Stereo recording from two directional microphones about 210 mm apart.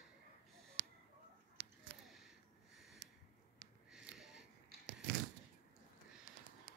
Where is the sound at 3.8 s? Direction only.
Centre (ahead or behind).